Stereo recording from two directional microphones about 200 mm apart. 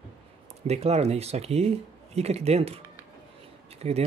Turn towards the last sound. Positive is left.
turn(degrees=-30)  # may be behind; listen again after turning